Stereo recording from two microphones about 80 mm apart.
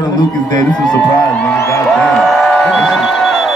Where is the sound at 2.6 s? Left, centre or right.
Centre.